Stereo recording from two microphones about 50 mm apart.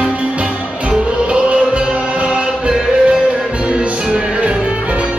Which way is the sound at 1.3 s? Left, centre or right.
Centre.